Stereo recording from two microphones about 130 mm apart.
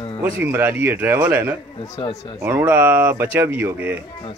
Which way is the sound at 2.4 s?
15° right (ahead or behind).